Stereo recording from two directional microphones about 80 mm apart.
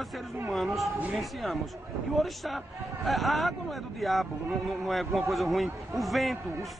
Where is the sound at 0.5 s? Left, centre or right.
Centre.